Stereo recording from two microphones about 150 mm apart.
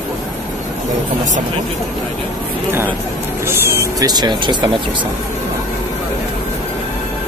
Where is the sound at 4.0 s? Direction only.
25° right (ahead or behind).